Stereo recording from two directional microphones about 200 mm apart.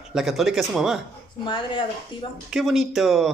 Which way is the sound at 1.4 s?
25° left (ahead or behind).